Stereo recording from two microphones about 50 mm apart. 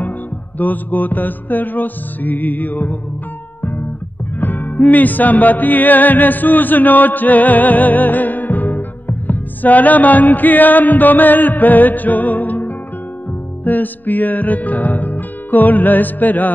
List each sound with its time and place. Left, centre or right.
0.6 s music: left
4.4 s music: left